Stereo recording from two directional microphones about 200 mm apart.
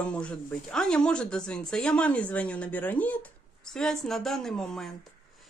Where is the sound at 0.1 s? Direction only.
5° left (ahead or behind).